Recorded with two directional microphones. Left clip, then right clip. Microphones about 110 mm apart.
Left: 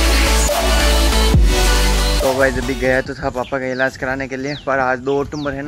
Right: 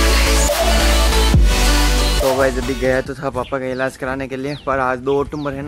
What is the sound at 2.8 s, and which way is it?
Speech, 30° right (ahead or behind).